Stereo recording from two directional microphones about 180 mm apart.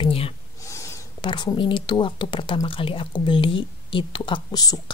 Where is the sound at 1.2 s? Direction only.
25° left (ahead or behind).